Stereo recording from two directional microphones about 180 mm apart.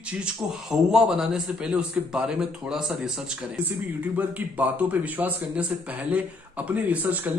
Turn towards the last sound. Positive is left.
turn(degrees=-10)  # may be behind; listen again after turning